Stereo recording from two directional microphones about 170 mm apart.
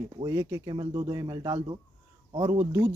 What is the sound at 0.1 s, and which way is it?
Speech, 20° right (ahead or behind).